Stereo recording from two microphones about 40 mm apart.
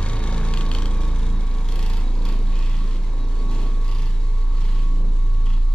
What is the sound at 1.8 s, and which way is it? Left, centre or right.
Lawn mower, left.